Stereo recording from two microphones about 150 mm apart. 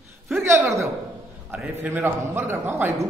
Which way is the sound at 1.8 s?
15° right (ahead or behind).